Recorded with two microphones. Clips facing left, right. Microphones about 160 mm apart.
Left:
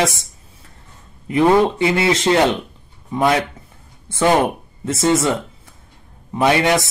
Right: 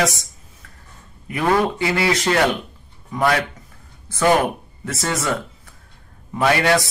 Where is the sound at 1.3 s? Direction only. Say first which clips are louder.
Left 5 dB; 25° left (ahead or behind).